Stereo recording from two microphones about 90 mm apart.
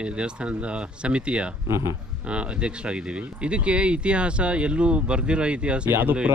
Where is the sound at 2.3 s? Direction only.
10° right (ahead or behind).